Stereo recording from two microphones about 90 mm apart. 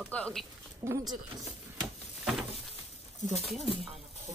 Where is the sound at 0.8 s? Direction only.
25° right (ahead or behind).